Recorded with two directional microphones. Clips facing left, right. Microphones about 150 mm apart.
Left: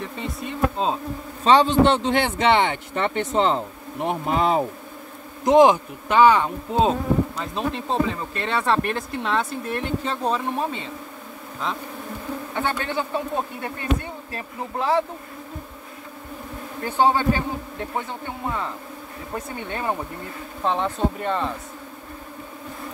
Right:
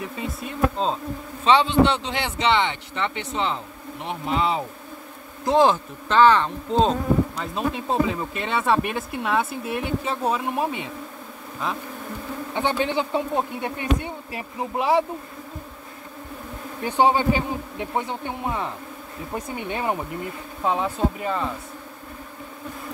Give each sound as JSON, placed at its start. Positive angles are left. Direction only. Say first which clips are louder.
{"t": 0.0, "sound": "insect", "louder": "even", "side_deg": -5}
{"t": 1.4, "sound": "speech", "louder": "left 2 dB", "side_deg": 40}
{"t": 5.4, "sound": "speech", "louder": "left 4 dB", "side_deg": 15}
{"t": 7.5, "sound": "speech", "louder": "right 1 dB", "side_deg": -5}
{"t": 11.6, "sound": "insect", "louder": "even", "side_deg": -5}
{"t": 12.5, "sound": "speech", "louder": "right 3 dB", "side_deg": -20}
{"t": 16.8, "sound": "speech", "louder": "even", "side_deg": -15}
{"t": 20.6, "sound": "insect", "louder": "even", "side_deg": -5}